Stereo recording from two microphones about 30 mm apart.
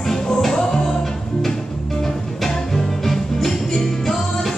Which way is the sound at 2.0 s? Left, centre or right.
Centre.